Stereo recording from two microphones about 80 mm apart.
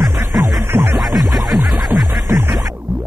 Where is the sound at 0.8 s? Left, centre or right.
Centre.